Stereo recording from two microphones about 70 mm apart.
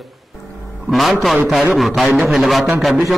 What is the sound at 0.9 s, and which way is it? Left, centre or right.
A man's voice, centre.